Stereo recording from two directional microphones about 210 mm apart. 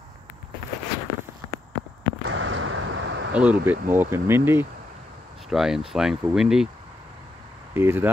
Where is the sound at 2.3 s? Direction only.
70° right (ahead or behind).